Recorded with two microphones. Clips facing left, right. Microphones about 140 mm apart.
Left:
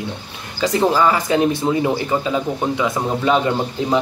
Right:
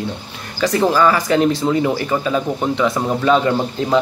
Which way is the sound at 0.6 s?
20° left (ahead or behind).